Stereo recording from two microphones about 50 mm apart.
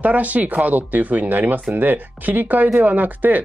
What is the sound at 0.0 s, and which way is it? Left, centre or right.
Speech, right.